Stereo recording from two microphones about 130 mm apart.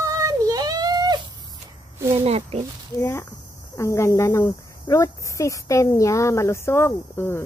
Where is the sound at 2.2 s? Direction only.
55° right (ahead or behind).